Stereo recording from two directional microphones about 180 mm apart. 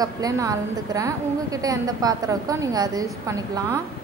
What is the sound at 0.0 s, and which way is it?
A woman's voice, 20° right (ahead or behind).